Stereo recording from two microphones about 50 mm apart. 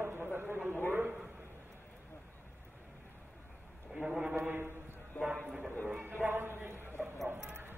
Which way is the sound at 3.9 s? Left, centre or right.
Centre.